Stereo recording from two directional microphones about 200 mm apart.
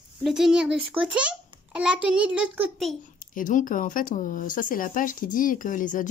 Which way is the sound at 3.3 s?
40° left (ahead or behind).